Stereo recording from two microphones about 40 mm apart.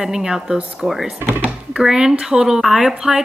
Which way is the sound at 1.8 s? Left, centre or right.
Centre.